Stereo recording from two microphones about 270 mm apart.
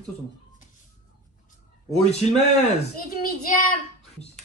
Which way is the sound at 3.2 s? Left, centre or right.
Left.